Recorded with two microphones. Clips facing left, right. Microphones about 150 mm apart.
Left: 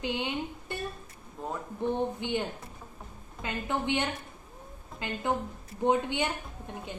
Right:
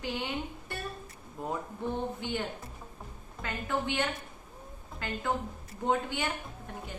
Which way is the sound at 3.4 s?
20° left (ahead or behind).